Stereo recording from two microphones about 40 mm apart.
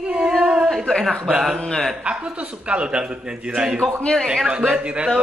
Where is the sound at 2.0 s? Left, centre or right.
Right.